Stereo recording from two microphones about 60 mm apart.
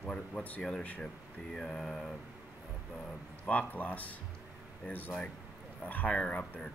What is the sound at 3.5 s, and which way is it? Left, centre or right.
Speech, left.